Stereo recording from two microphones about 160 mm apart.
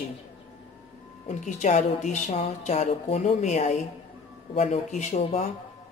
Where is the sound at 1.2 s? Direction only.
50° left (ahead or behind).